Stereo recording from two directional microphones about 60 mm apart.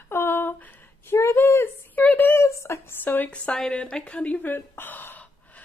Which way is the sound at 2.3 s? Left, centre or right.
Left.